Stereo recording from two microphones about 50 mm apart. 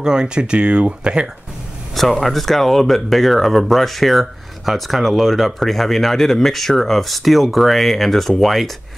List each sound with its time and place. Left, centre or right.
0.0 s speech: centre
2.0 s speech: centre